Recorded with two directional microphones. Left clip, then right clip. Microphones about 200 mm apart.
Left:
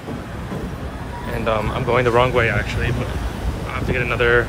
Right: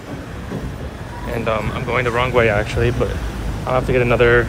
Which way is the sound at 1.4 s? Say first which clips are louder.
Left 2 dB; 15° left (ahead or behind).